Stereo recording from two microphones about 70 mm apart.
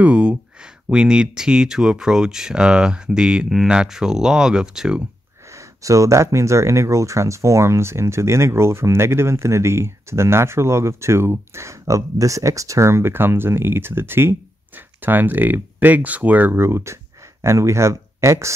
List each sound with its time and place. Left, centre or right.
0.0 s speech: centre
5.8 s speech: right